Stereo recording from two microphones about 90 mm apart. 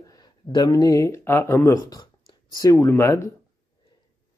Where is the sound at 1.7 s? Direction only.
40° left (ahead or behind).